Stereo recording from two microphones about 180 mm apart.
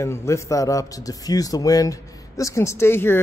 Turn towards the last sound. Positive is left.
turn(degrees=15)  # may be behind; listen again after turning